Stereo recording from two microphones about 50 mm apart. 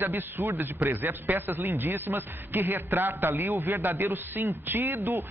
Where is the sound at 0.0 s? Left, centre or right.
Right.